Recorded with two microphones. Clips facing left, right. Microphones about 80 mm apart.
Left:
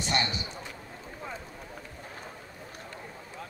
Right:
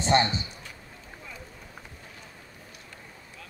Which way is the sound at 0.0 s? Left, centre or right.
Right.